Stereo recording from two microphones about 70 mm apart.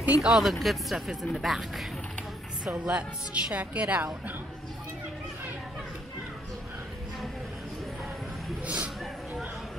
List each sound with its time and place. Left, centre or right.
0.0 s speech: centre
2.8 s speech: centre
8.6 s a sound: centre